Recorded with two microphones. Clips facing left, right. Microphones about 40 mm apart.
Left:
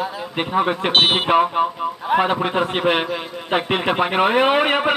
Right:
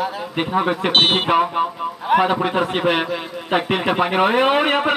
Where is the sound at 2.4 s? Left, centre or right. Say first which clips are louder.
Even; left.